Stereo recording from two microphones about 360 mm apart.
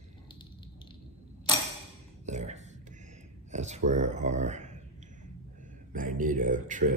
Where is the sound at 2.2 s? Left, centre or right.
Centre.